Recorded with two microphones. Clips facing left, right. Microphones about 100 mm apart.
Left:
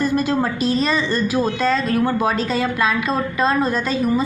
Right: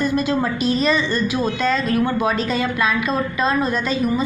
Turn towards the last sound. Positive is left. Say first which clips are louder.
# left 1 dB
turn(degrees=35)  # may be behind; listen again after turning